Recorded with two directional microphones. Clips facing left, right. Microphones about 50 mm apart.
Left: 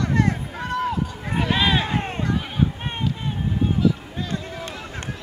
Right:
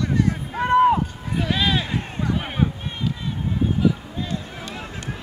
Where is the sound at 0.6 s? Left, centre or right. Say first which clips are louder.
Right 10 dB; right.